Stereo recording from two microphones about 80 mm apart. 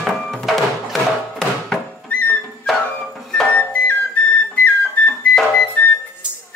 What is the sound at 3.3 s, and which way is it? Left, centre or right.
Music, centre.